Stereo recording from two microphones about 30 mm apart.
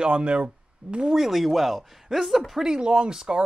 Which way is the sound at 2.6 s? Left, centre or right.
Right.